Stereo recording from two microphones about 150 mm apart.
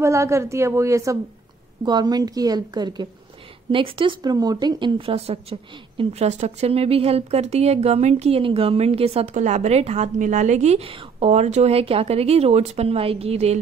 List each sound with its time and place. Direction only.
0.0 s a woman's voice: 20° right (ahead or behind); by 13.6 s 45° right (ahead or behind)